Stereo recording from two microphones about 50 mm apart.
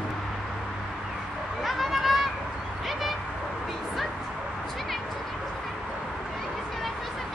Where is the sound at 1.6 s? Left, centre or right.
Centre.